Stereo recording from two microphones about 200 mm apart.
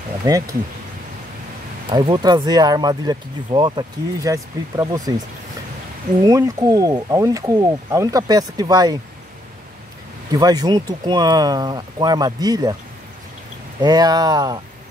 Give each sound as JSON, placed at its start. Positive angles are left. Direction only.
{"t": 0.2, "sound": "speech", "side_deg": -15}
{"t": 1.9, "sound": "speech", "side_deg": -20}
{"t": 6.2, "sound": "speech", "side_deg": -15}
{"t": 10.3, "sound": "speech", "side_deg": -20}
{"t": 13.7, "sound": "speech", "side_deg": -20}